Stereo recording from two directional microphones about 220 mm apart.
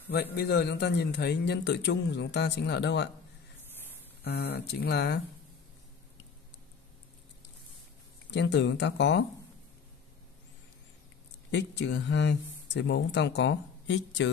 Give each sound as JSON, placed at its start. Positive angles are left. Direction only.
{"t": 0.1, "sound": "a man's voice", "side_deg": 45}
{"t": 4.2, "sound": "a man's voice", "side_deg": 50}
{"t": 8.3, "sound": "a man's voice", "side_deg": 50}
{"t": 11.5, "sound": "speech", "side_deg": 55}